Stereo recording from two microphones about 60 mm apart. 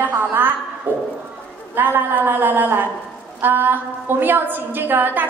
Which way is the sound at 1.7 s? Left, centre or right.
Right.